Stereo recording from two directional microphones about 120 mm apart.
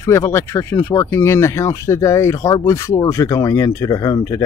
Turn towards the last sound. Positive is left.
turn(degrees=30)  # may be behind; listen again after turning